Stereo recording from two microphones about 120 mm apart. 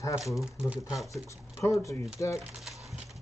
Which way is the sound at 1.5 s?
25° left (ahead or behind).